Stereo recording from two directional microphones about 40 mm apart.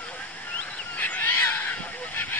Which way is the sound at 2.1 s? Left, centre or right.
Left.